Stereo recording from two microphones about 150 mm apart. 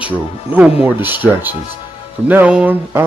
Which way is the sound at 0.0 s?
10° right (ahead or behind).